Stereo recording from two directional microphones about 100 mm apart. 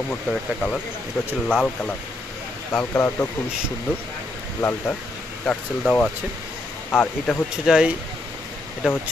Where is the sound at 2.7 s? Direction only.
20° left (ahead or behind).